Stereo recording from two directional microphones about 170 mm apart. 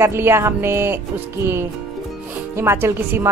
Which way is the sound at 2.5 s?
15° right (ahead or behind).